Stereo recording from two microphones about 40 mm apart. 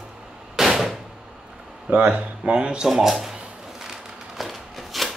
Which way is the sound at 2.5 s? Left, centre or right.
Right.